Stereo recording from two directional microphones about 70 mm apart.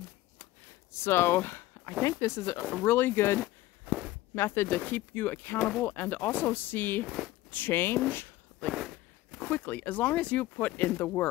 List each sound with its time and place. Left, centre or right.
1.0 s speech: left
2.0 s speech: left
2.8 s speech: left
3.8 s walk: centre
4.4 s speech: left
5.6 s speech: centre
5.9 s speech: left
7.1 s speech: centre
7.5 s speech: left
8.7 s walk: centre
9.4 s speech: left